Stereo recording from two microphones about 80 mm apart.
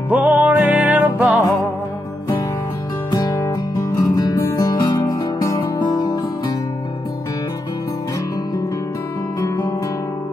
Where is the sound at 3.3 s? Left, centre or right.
Left.